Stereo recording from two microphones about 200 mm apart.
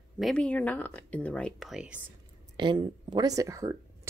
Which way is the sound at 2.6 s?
25° right (ahead or behind).